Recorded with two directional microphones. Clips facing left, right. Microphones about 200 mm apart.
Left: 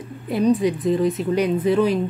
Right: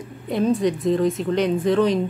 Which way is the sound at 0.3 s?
5° left (ahead or behind).